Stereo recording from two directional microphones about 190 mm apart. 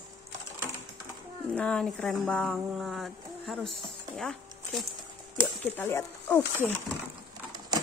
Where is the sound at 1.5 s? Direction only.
5° left (ahead or behind).